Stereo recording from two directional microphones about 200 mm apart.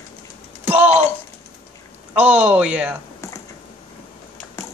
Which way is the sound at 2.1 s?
5° right (ahead or behind).